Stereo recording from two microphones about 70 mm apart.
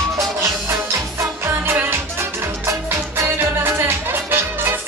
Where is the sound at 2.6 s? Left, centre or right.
Right.